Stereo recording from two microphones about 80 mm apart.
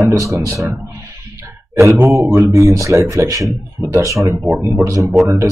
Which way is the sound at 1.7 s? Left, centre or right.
Right.